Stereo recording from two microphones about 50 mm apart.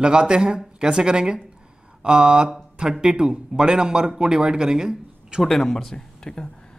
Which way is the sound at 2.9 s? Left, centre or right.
Centre.